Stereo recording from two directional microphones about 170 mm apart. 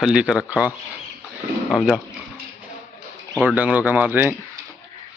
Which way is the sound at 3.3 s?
5° right (ahead or behind).